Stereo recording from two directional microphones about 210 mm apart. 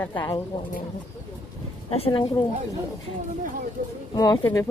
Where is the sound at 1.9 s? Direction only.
30° left (ahead or behind).